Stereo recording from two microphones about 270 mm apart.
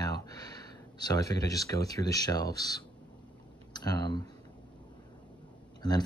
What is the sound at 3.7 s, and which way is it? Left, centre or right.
Speech, centre.